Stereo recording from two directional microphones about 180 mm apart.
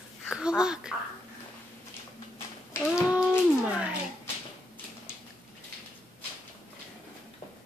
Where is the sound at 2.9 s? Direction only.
5° right (ahead or behind).